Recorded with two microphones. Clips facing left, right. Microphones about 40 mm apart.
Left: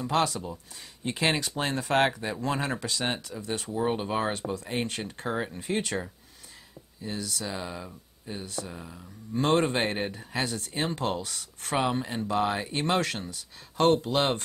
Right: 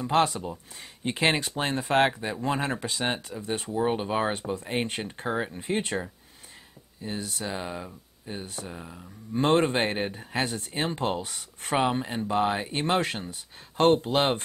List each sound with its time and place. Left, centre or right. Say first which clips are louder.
0.1 s speech: right 3 dB; right
3.7 s speech: right 2 dB; centre
4.6 s speech: right 2 dB; right
5.6 s speech: right 1 dB; right
7.0 s speech: right 1 dB; right
8.7 s speech: right 1 dB; centre
9.3 s speech: right 2 dB; right
10.1 s speech: right 2 dB; right